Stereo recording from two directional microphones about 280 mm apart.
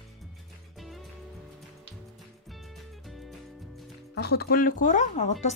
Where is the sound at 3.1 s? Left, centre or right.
Centre.